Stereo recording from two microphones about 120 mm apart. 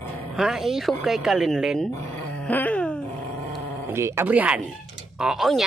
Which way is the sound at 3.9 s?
20° right (ahead or behind).